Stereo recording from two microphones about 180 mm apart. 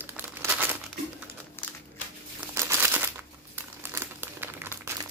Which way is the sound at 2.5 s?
15° right (ahead or behind).